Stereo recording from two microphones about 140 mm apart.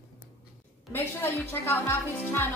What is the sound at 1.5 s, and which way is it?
Speech, 20° left (ahead or behind).